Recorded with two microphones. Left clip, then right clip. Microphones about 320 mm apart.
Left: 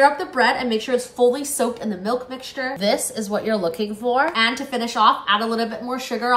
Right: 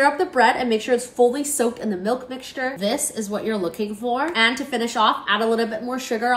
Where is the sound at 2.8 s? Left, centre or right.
Left.